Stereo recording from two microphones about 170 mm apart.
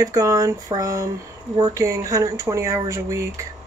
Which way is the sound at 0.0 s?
20° right (ahead or behind).